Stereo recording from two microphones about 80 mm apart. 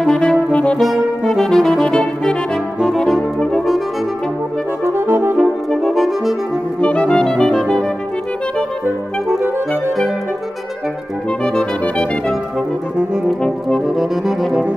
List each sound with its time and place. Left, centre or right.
0.0 s saxophone: centre
0.7 s brass instrument: centre
4.8 s brass instrument: right
5.4 s brass instrument: centre
6.8 s music: centre
11.4 s music: centre
13.4 s brass instrument: centre